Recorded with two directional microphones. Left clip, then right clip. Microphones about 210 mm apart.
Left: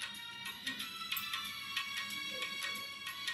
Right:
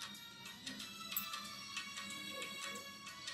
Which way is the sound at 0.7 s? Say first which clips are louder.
Left 7 dB; 30° right (ahead or behind).